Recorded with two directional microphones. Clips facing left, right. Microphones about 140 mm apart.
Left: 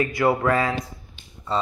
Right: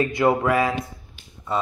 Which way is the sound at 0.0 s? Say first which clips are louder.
Right 1 dB; 20° right (ahead or behind).